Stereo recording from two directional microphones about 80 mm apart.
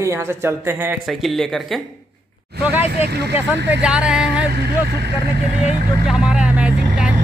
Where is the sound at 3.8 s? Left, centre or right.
Centre.